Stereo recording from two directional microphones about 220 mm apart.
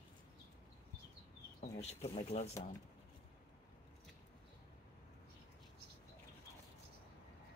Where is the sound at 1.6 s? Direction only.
30° left (ahead or behind).